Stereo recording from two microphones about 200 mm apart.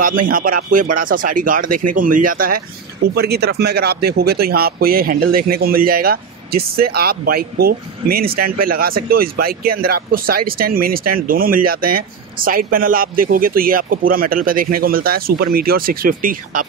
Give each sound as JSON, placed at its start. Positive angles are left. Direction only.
{"t": 0.0, "sound": "speech", "side_deg": -45}